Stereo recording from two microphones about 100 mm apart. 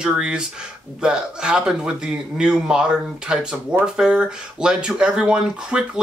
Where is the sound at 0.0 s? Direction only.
10° right (ahead or behind).